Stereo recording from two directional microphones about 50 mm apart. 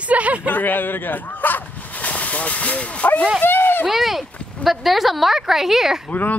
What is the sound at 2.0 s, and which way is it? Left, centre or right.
Speech, left.